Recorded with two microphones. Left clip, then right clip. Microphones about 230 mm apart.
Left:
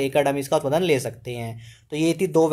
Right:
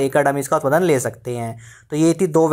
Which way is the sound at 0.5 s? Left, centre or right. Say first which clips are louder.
Right 4 dB; right.